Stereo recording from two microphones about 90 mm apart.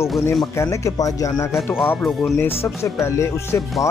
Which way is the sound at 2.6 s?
30° left (ahead or behind).